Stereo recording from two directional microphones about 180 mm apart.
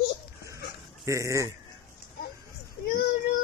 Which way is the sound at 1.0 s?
15° right (ahead or behind).